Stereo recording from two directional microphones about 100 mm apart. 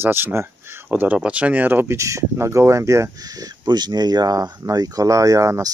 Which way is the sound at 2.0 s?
30° right (ahead or behind).